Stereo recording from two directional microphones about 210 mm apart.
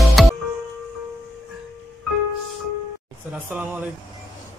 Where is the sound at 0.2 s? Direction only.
Centre (ahead or behind).